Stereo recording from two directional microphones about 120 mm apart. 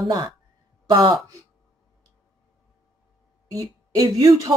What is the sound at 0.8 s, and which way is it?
Speech, 35° right (ahead or behind).